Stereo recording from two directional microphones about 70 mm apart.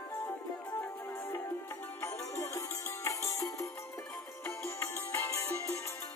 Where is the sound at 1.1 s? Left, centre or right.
Left.